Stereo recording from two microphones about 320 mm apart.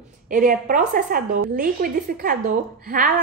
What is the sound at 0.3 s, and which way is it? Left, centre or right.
A woman's voice, right.